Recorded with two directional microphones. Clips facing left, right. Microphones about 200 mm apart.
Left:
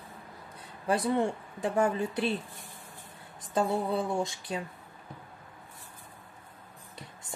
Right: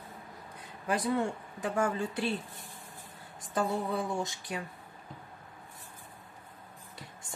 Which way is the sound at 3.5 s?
25° left (ahead or behind).